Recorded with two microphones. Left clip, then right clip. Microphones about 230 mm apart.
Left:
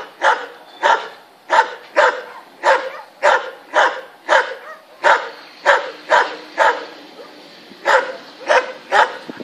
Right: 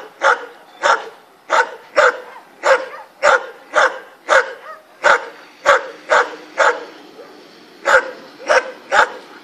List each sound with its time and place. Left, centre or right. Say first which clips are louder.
0.2 s dog: right 1 dB; centre
7.8 s dog: right 1 dB; centre